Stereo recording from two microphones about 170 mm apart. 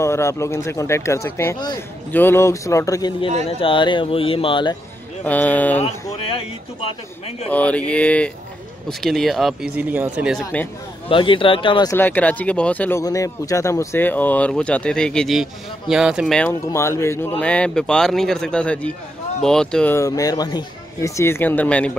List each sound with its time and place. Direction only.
0.0 s speech: 15° left (ahead or behind)
3.4 s speech: 30° left (ahead or behind)
5.2 s speech: 10° left (ahead or behind)
6.1 s speech: 35° left (ahead or behind)
7.5 s speech: 10° left (ahead or behind)
11.1 s speech: 30° left (ahead or behind)
11.9 s speech: 10° left (ahead or behind)
13.0 s speech: 20° left (ahead or behind); by 16.3 s 5° right (ahead or behind)
16.6 s speech: 15° left (ahead or behind)
20.0 s speech: 20° left (ahead or behind)